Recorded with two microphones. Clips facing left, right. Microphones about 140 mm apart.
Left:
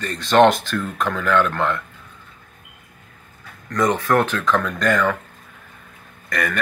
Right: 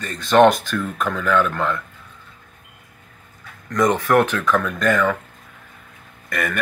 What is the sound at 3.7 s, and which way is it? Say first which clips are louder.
Speech: right 1 dB; 15° right (ahead or behind).